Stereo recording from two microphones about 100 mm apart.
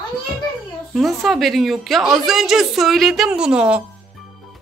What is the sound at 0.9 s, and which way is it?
A woman's voice, centre (ahead or behind).